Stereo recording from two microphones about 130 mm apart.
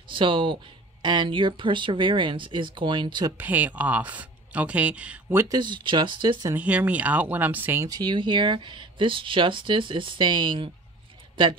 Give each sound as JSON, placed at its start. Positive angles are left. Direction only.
{"t": 0.1, "sound": "speech", "side_deg": -40}
{"t": 3.3, "sound": "speech", "side_deg": -15}
{"t": 5.6, "sound": "speech", "side_deg": -35}
{"t": 6.5, "sound": "speech", "side_deg": -10}
{"t": 7.9, "sound": "speech", "side_deg": -35}